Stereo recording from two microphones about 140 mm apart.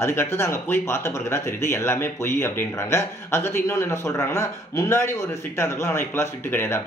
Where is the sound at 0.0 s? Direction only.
20° left (ahead or behind).